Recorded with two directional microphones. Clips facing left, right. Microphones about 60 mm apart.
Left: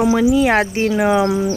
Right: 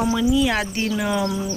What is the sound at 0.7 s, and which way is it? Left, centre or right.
Speech, left.